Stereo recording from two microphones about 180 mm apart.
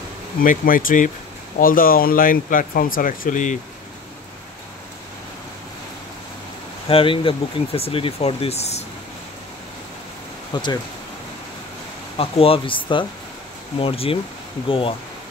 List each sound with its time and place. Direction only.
0.4 s speech: 50° left (ahead or behind)
6.9 s speech: 30° left (ahead or behind)
10.5 s speech: 25° left (ahead or behind)
12.2 s speech: 30° left (ahead or behind)